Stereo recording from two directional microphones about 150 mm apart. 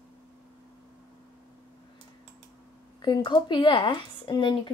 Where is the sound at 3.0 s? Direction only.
30° left (ahead or behind).